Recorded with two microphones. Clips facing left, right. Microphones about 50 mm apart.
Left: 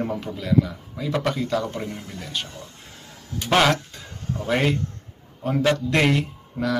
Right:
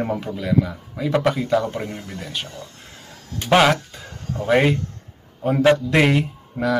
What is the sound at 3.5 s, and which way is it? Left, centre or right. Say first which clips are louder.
Speech: right 3 dB; centre.